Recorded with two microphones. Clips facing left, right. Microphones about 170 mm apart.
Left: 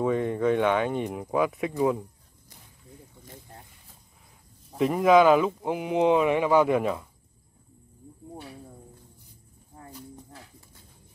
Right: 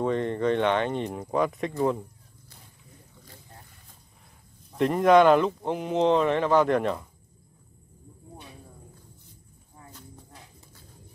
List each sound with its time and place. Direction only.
0.0 s speech: 5° left (ahead or behind)
4.7 s speech: centre (ahead or behind)
9.8 s a sound: 50° left (ahead or behind)